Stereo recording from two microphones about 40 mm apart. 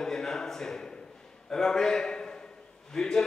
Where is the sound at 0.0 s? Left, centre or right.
Centre.